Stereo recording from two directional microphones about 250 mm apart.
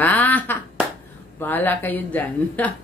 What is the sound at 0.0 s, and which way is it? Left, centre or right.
Clapping, centre.